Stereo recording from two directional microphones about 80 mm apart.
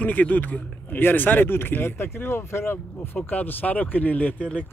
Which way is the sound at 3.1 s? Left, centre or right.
Left.